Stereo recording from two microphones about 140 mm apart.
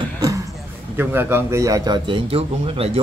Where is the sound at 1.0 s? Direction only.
15° right (ahead or behind).